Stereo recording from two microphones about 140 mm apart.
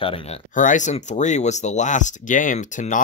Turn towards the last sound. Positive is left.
turn(degrees=65)  # may be behind; listen again after turning